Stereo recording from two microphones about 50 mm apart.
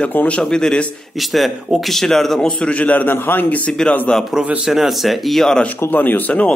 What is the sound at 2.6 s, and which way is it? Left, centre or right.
Speech, left.